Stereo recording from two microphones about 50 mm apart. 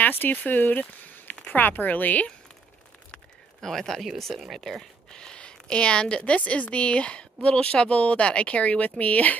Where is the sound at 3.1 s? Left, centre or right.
Centre.